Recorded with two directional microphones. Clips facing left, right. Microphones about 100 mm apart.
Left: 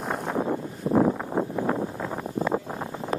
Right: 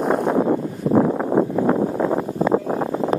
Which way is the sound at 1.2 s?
80° right.